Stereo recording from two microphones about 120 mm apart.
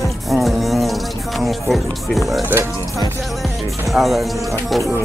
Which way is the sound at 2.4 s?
20° right (ahead or behind).